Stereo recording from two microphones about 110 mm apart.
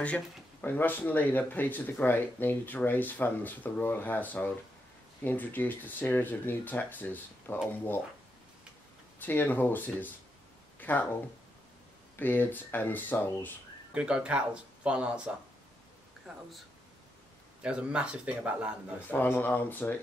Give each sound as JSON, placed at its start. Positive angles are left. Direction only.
{"t": 0.0, "sound": "speech", "side_deg": 15}
{"t": 9.2, "sound": "speech", "side_deg": 15}
{"t": 10.8, "sound": "a sound", "side_deg": 15}
{"t": 12.2, "sound": "speech", "side_deg": 15}
{"t": 13.9, "sound": "speech", "side_deg": -10}
{"t": 17.6, "sound": "speech", "side_deg": -10}
{"t": 19.0, "sound": "speech", "side_deg": 15}